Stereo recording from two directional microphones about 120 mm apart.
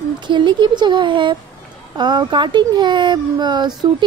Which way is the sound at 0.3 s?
40° right (ahead or behind).